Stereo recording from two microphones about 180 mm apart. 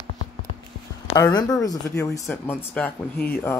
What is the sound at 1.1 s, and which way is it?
Speech, 20° left (ahead or behind).